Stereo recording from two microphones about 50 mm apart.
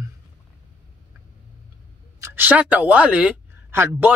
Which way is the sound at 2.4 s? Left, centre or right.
Right.